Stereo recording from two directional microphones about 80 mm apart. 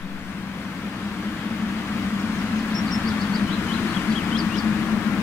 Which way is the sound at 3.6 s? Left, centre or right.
Left.